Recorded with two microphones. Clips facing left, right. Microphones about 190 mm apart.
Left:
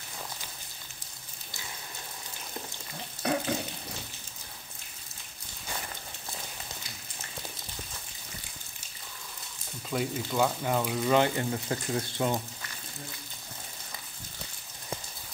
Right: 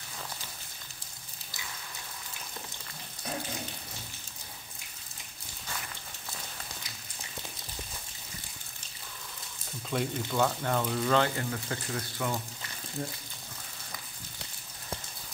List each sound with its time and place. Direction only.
3.2 s water tap: 80° left
9.8 s speech: 5° left (ahead or behind); by 12.4 s 25° left (ahead or behind)